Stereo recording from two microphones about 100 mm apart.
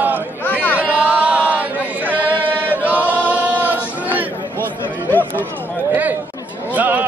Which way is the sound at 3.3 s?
15° right (ahead or behind).